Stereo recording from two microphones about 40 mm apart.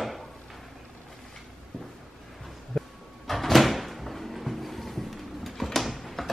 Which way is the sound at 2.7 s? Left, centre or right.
Centre.